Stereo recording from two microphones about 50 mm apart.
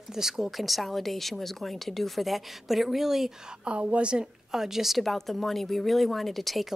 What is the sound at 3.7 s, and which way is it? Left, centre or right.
Speech, right.